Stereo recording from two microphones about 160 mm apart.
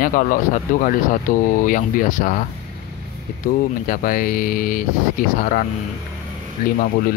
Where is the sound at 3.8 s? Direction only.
60° left (ahead or behind).